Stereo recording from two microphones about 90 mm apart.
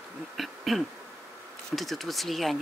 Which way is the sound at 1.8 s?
Centre (ahead or behind).